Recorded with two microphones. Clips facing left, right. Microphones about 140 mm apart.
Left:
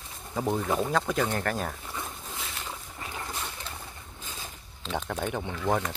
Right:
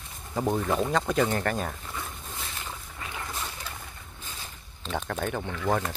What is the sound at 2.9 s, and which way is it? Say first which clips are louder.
Boat: right 1 dB; 30° left (ahead or behind).